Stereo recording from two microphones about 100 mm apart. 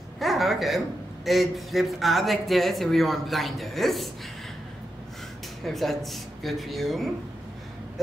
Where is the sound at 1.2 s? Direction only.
Centre (ahead or behind).